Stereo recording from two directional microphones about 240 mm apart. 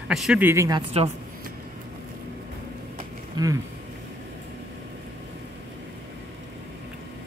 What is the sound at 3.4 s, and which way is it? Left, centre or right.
Speech, centre.